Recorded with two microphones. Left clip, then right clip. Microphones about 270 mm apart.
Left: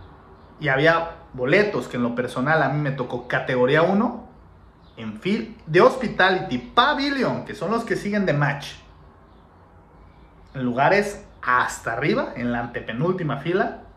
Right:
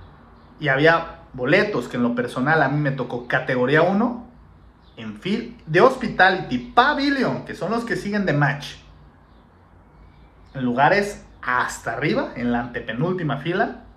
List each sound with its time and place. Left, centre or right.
0.6 s speech: centre
10.5 s speech: centre